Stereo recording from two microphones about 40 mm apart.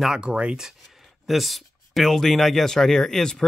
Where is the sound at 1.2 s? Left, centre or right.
Centre.